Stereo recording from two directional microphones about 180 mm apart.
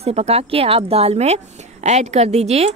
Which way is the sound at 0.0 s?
35° right (ahead or behind).